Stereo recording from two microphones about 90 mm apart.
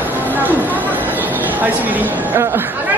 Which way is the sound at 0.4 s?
20° right (ahead or behind).